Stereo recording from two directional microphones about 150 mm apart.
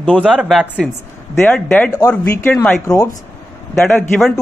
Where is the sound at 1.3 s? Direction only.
10° left (ahead or behind).